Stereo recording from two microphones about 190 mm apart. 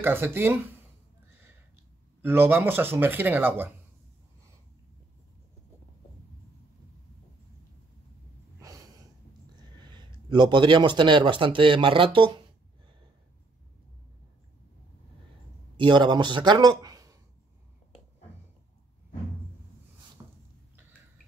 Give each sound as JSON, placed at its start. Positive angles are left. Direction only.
{"t": 0.0, "sound": "speech", "side_deg": -10}
{"t": 2.2, "sound": "speech", "side_deg": -10}
{"t": 8.5, "sound": "a sound", "side_deg": -15}
{"t": 9.6, "sound": "speech", "side_deg": -25}
{"t": 15.7, "sound": "speech", "side_deg": -25}
{"t": 20.2, "sound": "a sound", "side_deg": -15}